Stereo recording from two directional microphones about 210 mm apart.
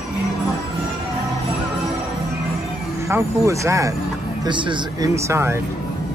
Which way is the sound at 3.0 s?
15° right (ahead or behind).